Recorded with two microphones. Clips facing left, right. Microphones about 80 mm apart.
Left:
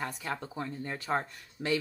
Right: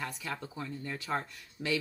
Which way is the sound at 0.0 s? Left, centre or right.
Left.